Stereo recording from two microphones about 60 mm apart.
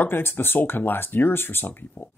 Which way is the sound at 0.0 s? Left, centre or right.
Left.